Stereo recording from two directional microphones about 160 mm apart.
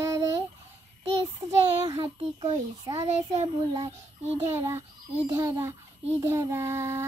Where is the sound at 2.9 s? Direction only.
40° right (ahead or behind).